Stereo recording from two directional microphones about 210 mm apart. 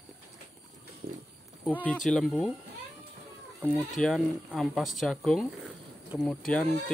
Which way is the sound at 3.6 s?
5° left (ahead or behind).